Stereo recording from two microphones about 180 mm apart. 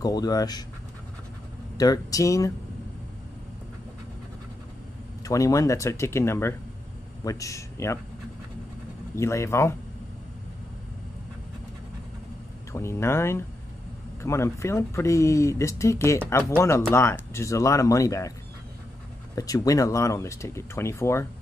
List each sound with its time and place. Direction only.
0.0 s speech: 20° left (ahead or behind)
1.8 s speech: 20° left (ahead or behind)
5.2 s speech: 20° left (ahead or behind)
9.1 s speech: 15° left (ahead or behind)
12.7 s speech: 15° left (ahead or behind)
19.3 s speech: 20° left (ahead or behind)